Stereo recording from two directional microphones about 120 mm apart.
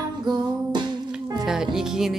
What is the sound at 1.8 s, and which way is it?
Music, 5° right (ahead or behind).